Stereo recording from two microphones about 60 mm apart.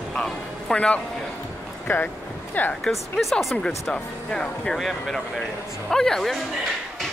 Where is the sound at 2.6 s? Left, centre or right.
Left.